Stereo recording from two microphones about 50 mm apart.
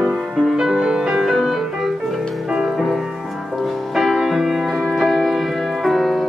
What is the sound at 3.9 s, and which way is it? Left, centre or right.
Music, centre.